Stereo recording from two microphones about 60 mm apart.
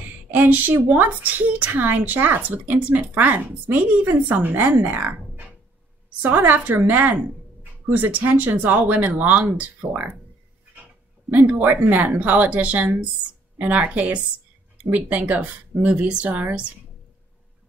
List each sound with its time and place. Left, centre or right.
0.3 s speech: right
11.6 s speech: right